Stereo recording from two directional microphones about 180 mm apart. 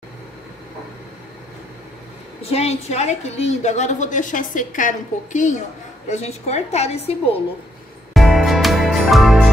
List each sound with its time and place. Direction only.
2.4 s a woman's voice: 35° left (ahead or behind)
8.1 s music: centre (ahead or behind)